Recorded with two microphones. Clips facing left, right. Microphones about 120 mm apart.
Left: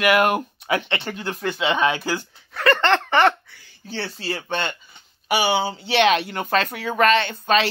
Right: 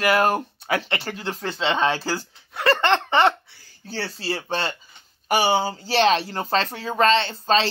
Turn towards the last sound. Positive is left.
turn(degrees=-30)  # may be behind; listen again after turning